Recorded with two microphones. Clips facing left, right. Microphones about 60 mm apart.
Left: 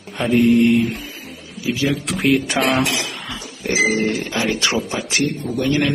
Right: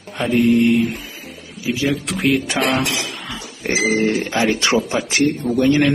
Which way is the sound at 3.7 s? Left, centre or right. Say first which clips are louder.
Right 1 dB; right.